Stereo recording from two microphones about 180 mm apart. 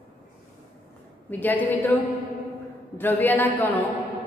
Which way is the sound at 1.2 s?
10° left (ahead or behind).